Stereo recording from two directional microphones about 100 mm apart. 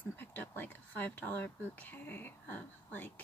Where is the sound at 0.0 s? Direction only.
20° left (ahead or behind).